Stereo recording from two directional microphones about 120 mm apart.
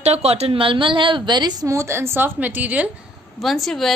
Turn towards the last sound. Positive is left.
turn(degrees=0)  # may be behind; listen again after turning